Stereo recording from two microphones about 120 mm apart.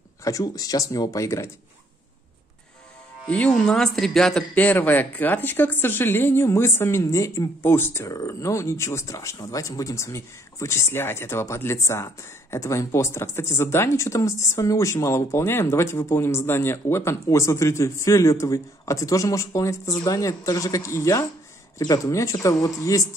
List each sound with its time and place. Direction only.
0.2 s a man's voice: 30° left (ahead or behind)
3.3 s a man's voice: 10° left (ahead or behind); by 23.0 s 30° left (ahead or behind)